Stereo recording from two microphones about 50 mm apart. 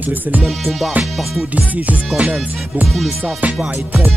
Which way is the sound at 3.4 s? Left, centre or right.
Right.